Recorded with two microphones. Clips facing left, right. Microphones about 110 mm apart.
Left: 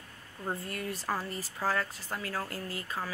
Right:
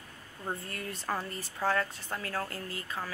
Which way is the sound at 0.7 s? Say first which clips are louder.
Left 3 dB; 20° left (ahead or behind).